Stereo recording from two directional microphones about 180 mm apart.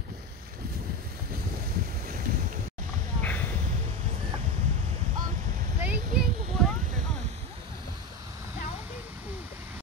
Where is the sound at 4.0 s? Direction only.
35° right (ahead or behind); by 6.4 s 55° right (ahead or behind).